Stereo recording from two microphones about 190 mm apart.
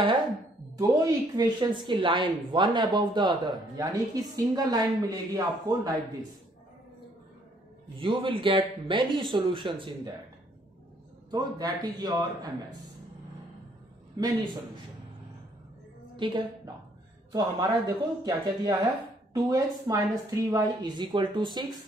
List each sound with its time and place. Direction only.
0.7 s a woman's voice: 20° right (ahead or behind)
8.0 s a woman's voice: 25° right (ahead or behind)
11.2 s a woman's voice: 20° right (ahead or behind)
14.1 s a woman's voice: 20° right (ahead or behind)
16.2 s a woman's voice: 25° right (ahead or behind)